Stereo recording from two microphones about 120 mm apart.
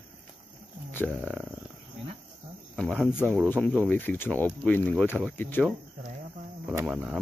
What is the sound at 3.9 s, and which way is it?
Speech, 15° left (ahead or behind).